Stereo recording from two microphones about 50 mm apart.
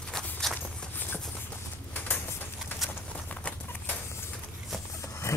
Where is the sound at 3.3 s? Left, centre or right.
Left.